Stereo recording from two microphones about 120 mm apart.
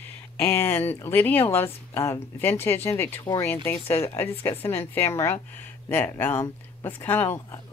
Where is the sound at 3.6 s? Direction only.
20° left (ahead or behind).